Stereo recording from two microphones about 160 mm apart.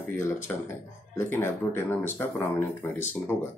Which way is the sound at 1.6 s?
10° left (ahead or behind).